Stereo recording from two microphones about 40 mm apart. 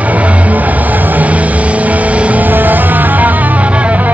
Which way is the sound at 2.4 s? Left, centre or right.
Right.